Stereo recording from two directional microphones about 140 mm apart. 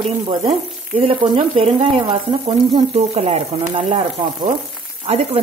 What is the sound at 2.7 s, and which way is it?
Speech, 50° right (ahead or behind).